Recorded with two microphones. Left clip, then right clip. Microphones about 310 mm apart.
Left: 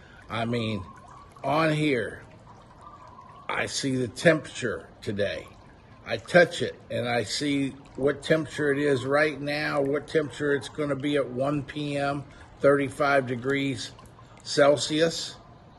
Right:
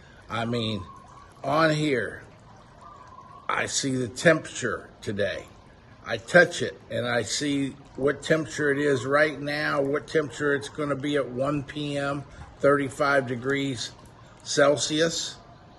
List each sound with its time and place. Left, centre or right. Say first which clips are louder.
0.3 s speech: right 1 dB; centre
3.4 s speech: right 2 dB; centre